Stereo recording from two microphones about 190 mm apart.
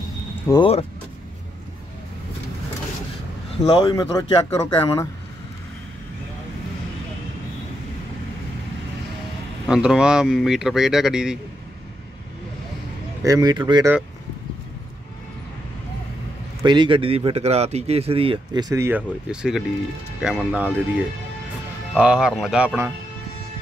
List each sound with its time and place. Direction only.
0.5 s speech: 25° left (ahead or behind)
3.6 s speech: 25° left (ahead or behind)
9.7 s speech: 5° right (ahead or behind)
13.2 s speech: 20° right (ahead or behind)
16.6 s speech: 25° right (ahead or behind); by 22.9 s 10° right (ahead or behind)